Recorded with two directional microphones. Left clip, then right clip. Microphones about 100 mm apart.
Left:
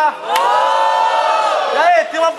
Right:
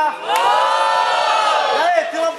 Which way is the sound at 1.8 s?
15° left (ahead or behind).